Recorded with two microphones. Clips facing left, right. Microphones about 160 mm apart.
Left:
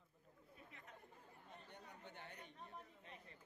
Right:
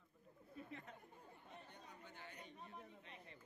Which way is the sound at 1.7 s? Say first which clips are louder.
Left 1 dB; 60° left (ahead or behind).